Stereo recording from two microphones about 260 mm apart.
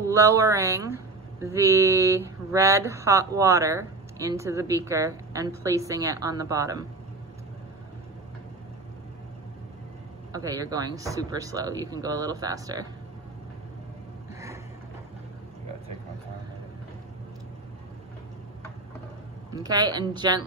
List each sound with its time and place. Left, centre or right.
0.0 s speech: centre
10.3 s speech: centre
19.5 s speech: centre